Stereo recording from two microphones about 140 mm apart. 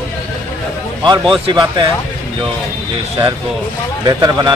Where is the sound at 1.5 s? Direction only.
30° right (ahead or behind).